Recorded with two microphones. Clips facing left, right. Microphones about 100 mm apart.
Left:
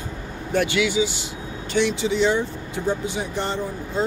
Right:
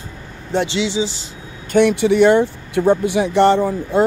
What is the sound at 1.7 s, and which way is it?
Speech, 55° right (ahead or behind).